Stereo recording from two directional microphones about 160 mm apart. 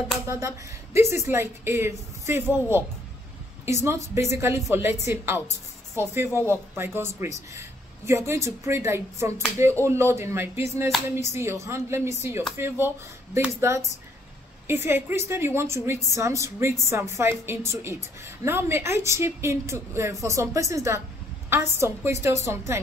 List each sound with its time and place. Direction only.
0.3 s a woman's voice: 15° right (ahead or behind)
3.6 s a woman's voice: 15° right (ahead or behind)